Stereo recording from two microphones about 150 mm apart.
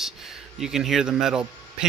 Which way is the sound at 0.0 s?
Centre (ahead or behind).